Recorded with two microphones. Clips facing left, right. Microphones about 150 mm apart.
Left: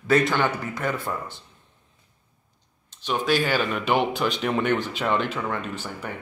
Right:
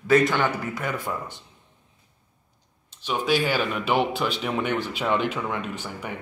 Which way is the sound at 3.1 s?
10° right (ahead or behind).